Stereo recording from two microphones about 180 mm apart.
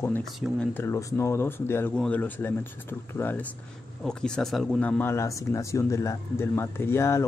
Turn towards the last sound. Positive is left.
turn(degrees=15)  # may be behind; listen again after turning